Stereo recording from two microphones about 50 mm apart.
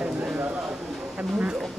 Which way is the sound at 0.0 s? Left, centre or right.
Right.